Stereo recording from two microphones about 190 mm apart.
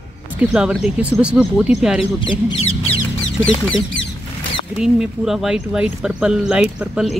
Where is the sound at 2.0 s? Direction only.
25° left (ahead or behind).